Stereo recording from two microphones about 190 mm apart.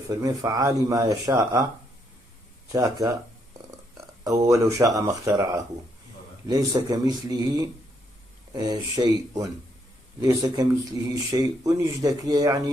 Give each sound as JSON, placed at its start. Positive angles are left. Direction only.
{"t": 0.2, "sound": "speech", "side_deg": -20}
{"t": 2.7, "sound": "speech", "side_deg": -15}
{"t": 4.2, "sound": "speech", "side_deg": -15}